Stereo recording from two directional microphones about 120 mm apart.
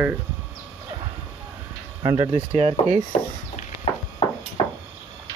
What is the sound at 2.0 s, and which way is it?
Speech, 30° right (ahead or behind).